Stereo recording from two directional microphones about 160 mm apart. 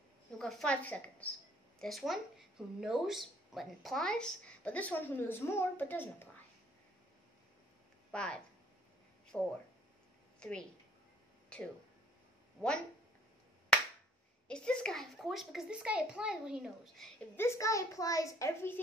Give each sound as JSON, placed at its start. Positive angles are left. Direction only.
{"t": 0.4, "sound": "a woman's voice", "side_deg": 5}
{"t": 8.1, "sound": "a woman's voice", "side_deg": 5}
{"t": 11.4, "sound": "a sound", "side_deg": 5}
{"t": 14.5, "sound": "a woman's voice", "side_deg": 5}
{"t": 17.4, "sound": "a child's voice", "side_deg": 20}